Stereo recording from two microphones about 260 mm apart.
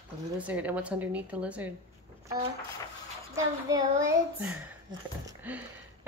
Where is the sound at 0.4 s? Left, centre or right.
Centre.